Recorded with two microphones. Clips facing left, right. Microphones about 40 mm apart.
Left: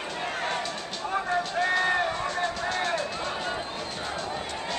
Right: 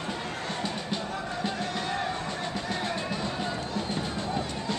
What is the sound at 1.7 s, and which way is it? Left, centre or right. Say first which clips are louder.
Music: left 7 dB; left.